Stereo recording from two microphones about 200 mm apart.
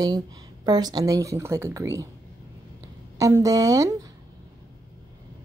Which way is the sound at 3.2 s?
15° right (ahead or behind).